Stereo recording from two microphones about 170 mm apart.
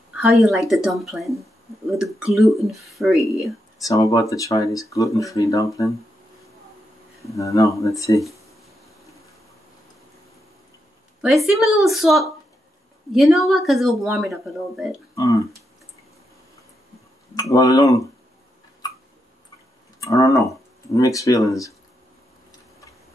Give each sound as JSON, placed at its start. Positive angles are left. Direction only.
{"t": 0.1, "sound": "speech", "side_deg": -5}
{"t": 3.8, "sound": "speech", "side_deg": 20}
{"t": 7.2, "sound": "speech", "side_deg": 20}
{"t": 11.1, "sound": "speech", "side_deg": -5}
{"t": 15.1, "sound": "speech", "side_deg": 20}
{"t": 17.3, "sound": "speech", "side_deg": 20}
{"t": 20.0, "sound": "speech", "side_deg": 20}